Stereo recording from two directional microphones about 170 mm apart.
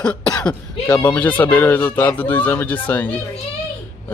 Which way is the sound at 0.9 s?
15° left (ahead or behind).